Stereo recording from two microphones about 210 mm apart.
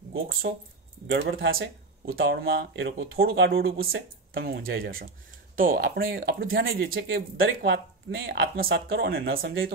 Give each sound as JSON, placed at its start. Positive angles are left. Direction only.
{"t": 0.3, "sound": "speech", "side_deg": -45}
{"t": 1.0, "sound": "speech", "side_deg": -60}